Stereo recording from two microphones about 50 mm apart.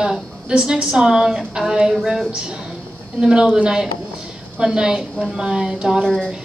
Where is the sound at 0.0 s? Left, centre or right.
Centre.